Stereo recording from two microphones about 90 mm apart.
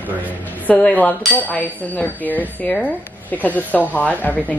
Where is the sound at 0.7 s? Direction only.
20° left (ahead or behind).